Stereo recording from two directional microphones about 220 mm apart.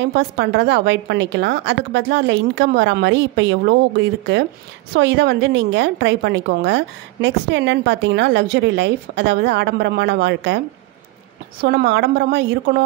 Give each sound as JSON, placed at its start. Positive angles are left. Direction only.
{"t": 0.0, "sound": "a woman's voice", "side_deg": -50}
{"t": 11.6, "sound": "a woman's voice", "side_deg": -50}